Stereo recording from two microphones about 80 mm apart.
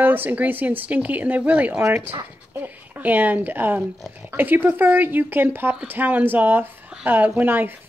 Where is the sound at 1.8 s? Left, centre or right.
Right.